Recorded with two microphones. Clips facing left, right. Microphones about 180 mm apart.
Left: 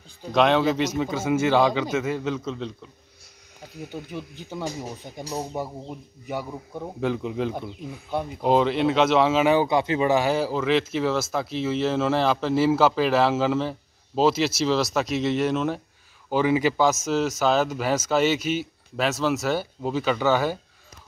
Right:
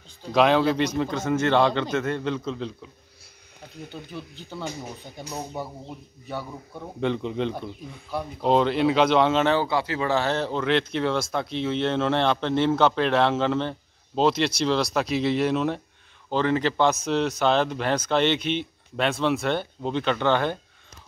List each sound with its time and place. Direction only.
0.3 s speech: centre (ahead or behind)
4.1 s speech: 15° left (ahead or behind)
7.0 s speech: 5° left (ahead or behind)